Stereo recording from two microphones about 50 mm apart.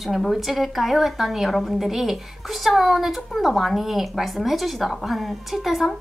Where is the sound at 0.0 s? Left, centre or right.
Centre.